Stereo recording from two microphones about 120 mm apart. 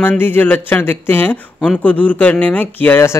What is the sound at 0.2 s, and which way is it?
Speech, 15° left (ahead or behind).